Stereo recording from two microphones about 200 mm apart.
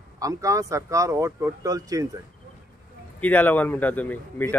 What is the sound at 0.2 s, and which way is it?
Speech, 15° right (ahead or behind).